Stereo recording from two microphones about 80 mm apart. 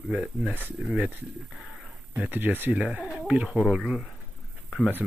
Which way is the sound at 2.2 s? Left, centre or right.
Centre.